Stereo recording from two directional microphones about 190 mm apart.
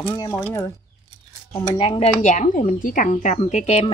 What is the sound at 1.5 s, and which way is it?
Speech, 25° left (ahead or behind).